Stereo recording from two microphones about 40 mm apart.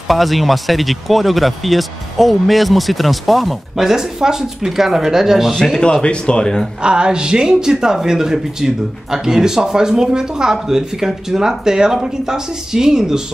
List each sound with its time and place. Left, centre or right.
0.1 s speech: centre
5.8 s speech: left
6.8 s speech: right